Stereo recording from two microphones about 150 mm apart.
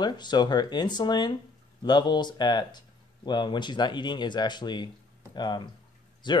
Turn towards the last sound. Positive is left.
turn(degrees=30)  # may be behind; listen again after turning